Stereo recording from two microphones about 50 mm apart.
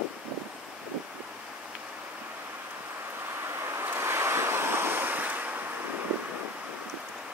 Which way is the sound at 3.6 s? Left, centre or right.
Right.